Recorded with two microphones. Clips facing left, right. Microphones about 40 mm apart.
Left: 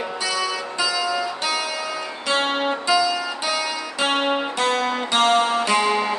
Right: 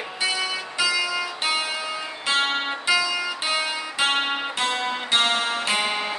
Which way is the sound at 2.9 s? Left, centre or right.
Right.